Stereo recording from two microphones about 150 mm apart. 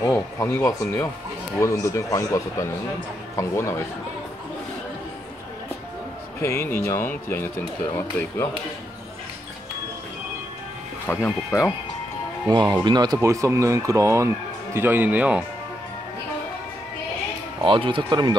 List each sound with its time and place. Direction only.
0.1 s speech: 15° left (ahead or behind)
6.4 s speech: 15° left (ahead or behind)
11.2 s speech: 20° left (ahead or behind)
12.4 s speech: 25° right (ahead or behind); by 15.4 s 10° right (ahead or behind)
17.6 s speech: 35° right (ahead or behind)